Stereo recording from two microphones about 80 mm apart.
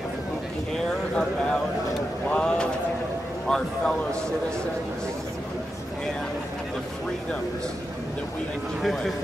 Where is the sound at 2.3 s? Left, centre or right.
Centre.